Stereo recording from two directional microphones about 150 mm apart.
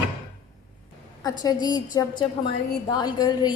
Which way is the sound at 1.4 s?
25° left (ahead or behind).